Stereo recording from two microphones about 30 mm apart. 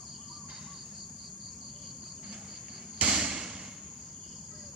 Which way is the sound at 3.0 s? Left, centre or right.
Right.